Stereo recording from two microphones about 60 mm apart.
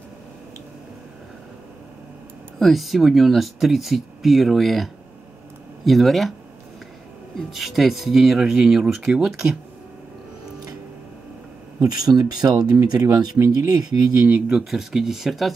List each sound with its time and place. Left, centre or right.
2.6 s speech: centre
7.3 s speech: centre
11.8 s speech: right
14.5 s speech: centre